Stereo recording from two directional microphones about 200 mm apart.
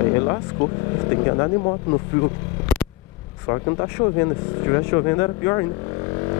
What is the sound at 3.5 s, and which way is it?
Speech, 20° left (ahead or behind).